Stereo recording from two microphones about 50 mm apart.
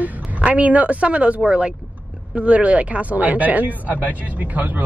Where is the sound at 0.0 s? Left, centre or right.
Right.